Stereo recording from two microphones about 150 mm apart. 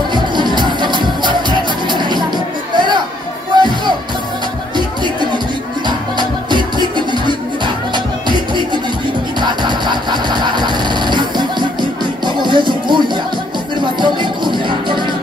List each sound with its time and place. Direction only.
0.1 s music: 30° right (ahead or behind)
5.9 s music: 30° right (ahead or behind)
9.4 s a sound: 30° right (ahead or behind)
12.4 s music: 30° right (ahead or behind)